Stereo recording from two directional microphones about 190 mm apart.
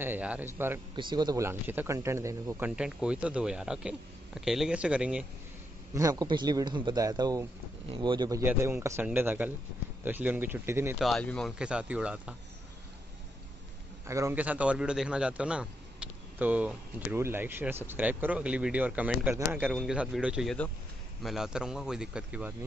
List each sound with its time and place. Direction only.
0.0 s a man's voice: 10° right (ahead or behind)
0.9 s a man's voice: 25° right (ahead or behind); by 5.2 s 5° right (ahead or behind)
5.9 s a man's voice: 20° right (ahead or behind)
11.0 s speech: centre (ahead or behind)
14.0 s a man's voice: 15° right (ahead or behind)